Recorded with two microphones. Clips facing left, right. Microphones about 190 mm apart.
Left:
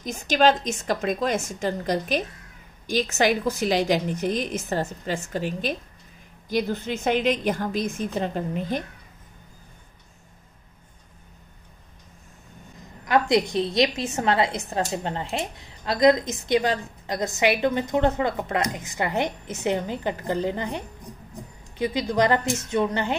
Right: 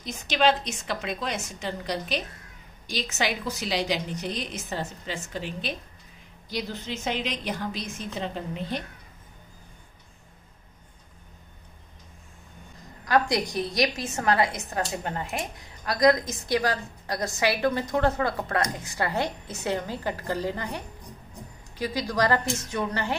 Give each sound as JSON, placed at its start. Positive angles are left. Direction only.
{"t": 0.0, "sound": "a woman's voice", "side_deg": 45}
{"t": 13.0, "sound": "a woman's voice", "side_deg": 20}